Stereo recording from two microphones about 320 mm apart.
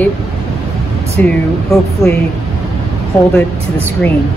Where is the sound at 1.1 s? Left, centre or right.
Centre.